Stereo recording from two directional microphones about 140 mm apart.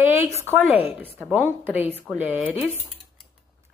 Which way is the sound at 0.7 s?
45° left (ahead or behind).